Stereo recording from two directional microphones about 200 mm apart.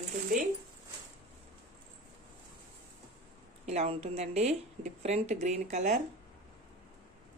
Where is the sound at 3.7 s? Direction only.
30° right (ahead or behind).